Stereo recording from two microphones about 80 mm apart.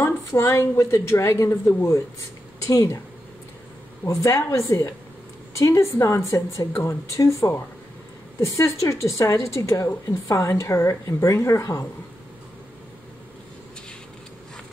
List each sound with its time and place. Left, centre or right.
0.0 s a woman's voice: left
4.0 s a woman's voice: left